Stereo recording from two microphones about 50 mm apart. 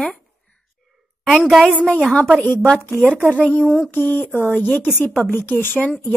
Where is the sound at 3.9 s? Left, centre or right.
Left.